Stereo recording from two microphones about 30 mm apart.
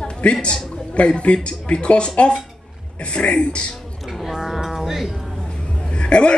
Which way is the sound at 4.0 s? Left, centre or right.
Centre.